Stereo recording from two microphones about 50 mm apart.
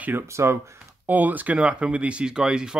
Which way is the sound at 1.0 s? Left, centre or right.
Right.